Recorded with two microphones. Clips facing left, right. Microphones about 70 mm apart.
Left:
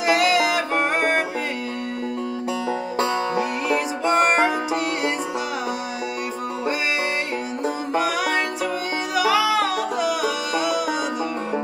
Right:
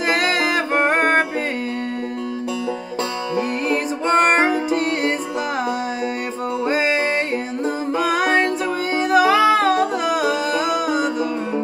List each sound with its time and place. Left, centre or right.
0.0 s music: right
3.3 s music: right
6.6 s music: right